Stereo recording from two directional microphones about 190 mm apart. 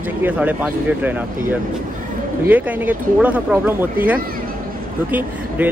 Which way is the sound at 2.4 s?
10° right (ahead or behind).